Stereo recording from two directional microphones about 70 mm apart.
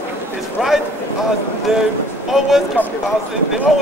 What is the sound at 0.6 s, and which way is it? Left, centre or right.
Speech, centre.